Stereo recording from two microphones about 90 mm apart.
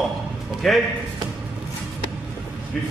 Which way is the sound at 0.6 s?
Centre (ahead or behind).